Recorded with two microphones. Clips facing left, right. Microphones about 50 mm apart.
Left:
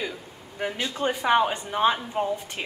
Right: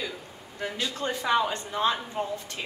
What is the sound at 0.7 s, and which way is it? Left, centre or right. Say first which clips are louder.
Speech: left 3 dB; left.